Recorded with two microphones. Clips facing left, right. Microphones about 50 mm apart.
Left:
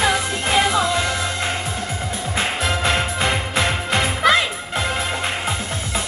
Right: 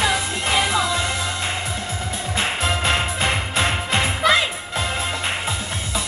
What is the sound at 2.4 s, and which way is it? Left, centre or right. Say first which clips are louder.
Music: left 1 dB; right.